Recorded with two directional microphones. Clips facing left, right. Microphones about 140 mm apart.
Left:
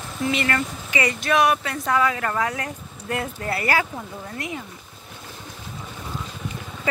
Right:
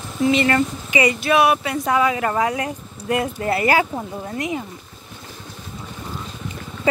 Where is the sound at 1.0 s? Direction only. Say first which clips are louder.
Right 3 dB; 5° right (ahead or behind).